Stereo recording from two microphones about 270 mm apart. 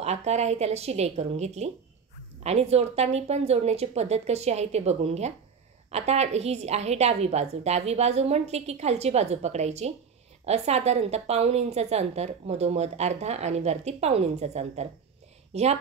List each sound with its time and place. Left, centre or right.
0.0 s a woman's voice: right